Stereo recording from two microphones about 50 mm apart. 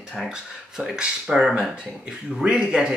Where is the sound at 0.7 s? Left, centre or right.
Centre.